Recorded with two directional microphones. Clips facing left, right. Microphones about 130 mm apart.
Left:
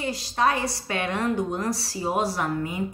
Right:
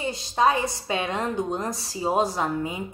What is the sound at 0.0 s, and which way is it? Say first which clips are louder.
Speech: right 2 dB; 20° right (ahead or behind).